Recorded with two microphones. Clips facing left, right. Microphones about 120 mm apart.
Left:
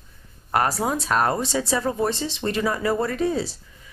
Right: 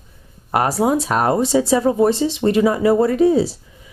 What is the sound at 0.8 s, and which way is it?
Speech, 10° right (ahead or behind).